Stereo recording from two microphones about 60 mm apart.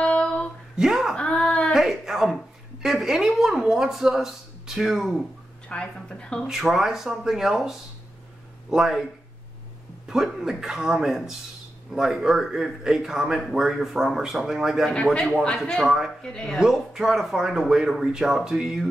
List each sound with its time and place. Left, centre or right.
0.0 s a sound: centre
0.7 s speech: centre
1.1 s a sound: centre
1.7 s a sound: centre
2.8 s speech: centre
5.9 s speech: centre
6.4 s speech: centre
10.0 s a man's voice: centre
15.4 s speech: centre
15.7 s a man's voice: centre
16.2 s speech: centre
16.5 s speech: centre